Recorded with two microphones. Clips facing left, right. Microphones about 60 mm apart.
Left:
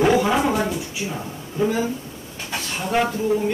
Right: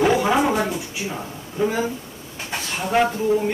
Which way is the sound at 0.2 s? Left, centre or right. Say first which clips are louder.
Right 1 dB; centre.